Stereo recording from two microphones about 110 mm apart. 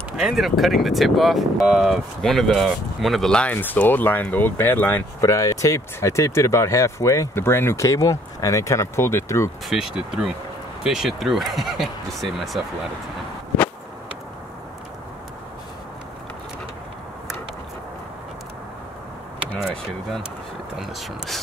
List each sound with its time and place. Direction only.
0.2 s speech: 5° right (ahead or behind); by 5.0 s 15° left (ahead or behind)
5.2 s speech: 30° left (ahead or behind)
9.7 s speech: 5° right (ahead or behind)
20.7 s speech: 5° right (ahead or behind)